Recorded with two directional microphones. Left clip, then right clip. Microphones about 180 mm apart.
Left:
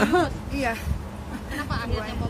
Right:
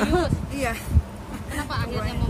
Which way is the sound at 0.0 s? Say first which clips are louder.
Left 2 dB; 20° left (ahead or behind).